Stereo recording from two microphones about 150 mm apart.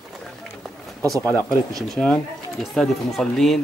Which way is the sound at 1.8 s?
5° left (ahead or behind).